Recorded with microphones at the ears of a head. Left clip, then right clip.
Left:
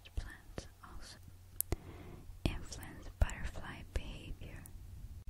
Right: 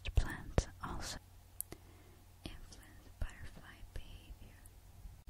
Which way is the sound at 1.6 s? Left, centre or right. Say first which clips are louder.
Left 10 dB; left.